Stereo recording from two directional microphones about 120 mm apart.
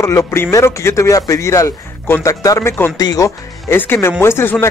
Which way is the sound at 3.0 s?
30° left (ahead or behind).